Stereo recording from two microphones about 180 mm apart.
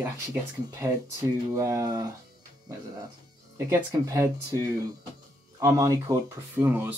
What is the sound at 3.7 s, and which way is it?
Speech, 15° right (ahead or behind).